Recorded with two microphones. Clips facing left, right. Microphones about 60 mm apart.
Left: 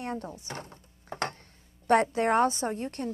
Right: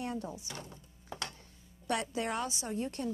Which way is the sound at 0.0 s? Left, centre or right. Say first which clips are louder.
Left 3 dB; left.